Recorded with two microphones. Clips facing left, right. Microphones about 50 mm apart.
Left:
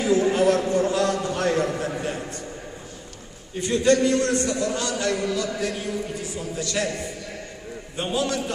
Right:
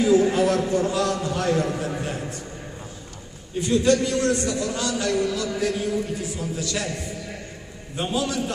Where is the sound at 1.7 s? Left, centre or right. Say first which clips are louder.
Even; centre.